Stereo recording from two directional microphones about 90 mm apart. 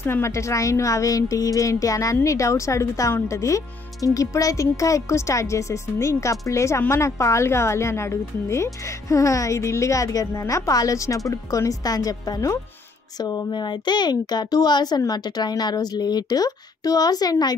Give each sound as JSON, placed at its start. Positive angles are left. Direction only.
{"t": 0.0, "sound": "speech", "side_deg": 30}
{"t": 13.5, "sound": "a child's voice", "side_deg": 55}